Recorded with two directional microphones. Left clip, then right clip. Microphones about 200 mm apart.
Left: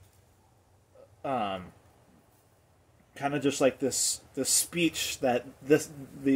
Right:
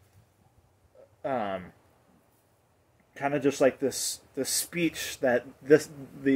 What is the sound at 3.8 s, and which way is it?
Speech, 45° right (ahead or behind).